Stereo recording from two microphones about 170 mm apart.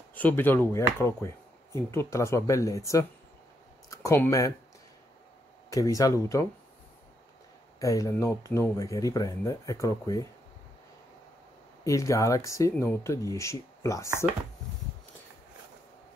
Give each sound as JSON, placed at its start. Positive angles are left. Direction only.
{"t": 0.1, "sound": "speech", "side_deg": 10}
{"t": 1.9, "sound": "speech", "side_deg": 15}
{"t": 3.9, "sound": "speech", "side_deg": 15}
{"t": 5.7, "sound": "speech", "side_deg": 20}
{"t": 7.8, "sound": "speech", "side_deg": 20}
{"t": 11.8, "sound": "speech", "side_deg": 20}